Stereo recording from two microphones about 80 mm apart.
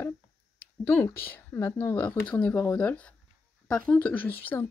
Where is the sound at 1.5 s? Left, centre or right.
Left.